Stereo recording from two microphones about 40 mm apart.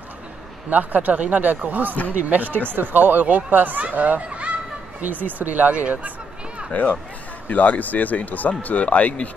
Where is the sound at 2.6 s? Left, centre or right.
Right.